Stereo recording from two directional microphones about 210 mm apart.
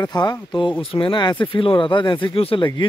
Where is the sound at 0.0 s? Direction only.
20° left (ahead or behind).